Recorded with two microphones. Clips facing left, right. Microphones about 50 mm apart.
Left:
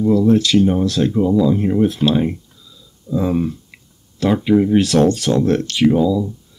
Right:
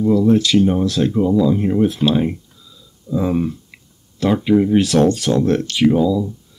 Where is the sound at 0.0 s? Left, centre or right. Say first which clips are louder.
Even; centre.